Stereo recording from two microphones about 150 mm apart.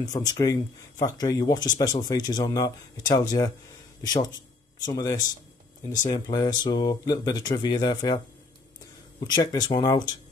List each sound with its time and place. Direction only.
0.3 s speech: 25° left (ahead or behind)
9.2 s speech: 30° left (ahead or behind)